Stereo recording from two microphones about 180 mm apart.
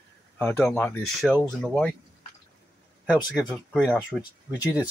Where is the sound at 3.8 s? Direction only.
5° left (ahead or behind).